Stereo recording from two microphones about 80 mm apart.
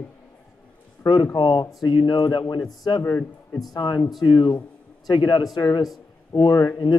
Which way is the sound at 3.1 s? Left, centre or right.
Left.